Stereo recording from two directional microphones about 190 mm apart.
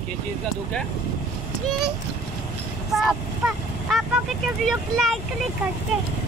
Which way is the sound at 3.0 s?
Centre (ahead or behind).